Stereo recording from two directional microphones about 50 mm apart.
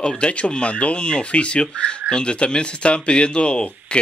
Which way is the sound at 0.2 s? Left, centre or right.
Left.